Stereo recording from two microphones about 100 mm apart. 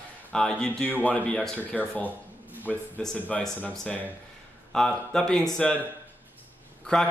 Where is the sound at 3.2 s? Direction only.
15° left (ahead or behind).